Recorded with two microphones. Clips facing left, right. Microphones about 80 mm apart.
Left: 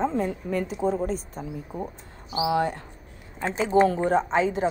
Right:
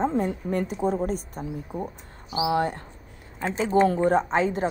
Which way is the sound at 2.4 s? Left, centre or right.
Right.